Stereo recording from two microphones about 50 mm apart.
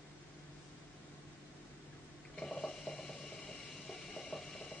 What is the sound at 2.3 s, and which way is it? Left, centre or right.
Ratchet, centre.